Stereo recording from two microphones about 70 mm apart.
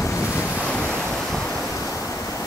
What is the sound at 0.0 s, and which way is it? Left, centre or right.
Waves, left.